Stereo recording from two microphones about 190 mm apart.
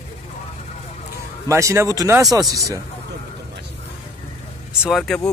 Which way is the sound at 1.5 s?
15° right (ahead or behind).